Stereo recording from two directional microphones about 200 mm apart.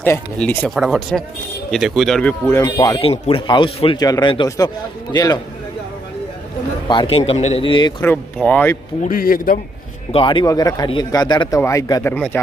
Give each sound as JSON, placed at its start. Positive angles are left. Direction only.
{"t": 0.0, "sound": "speech", "side_deg": 10}
{"t": 3.0, "sound": "speech", "side_deg": 30}
{"t": 6.9, "sound": "speech", "side_deg": 25}
{"t": 8.0, "sound": "speech", "side_deg": 10}
{"t": 9.0, "sound": "speech", "side_deg": 45}
{"t": 10.1, "sound": "speech", "side_deg": 25}